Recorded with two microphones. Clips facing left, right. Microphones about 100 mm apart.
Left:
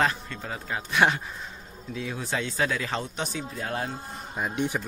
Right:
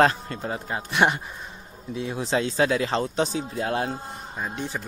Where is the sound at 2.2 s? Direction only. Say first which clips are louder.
Right 6 dB; 30° right (ahead or behind).